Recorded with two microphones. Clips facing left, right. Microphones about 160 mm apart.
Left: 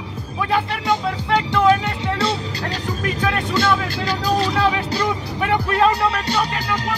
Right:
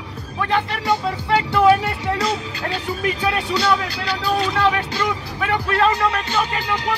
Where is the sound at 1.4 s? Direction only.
5° right (ahead or behind).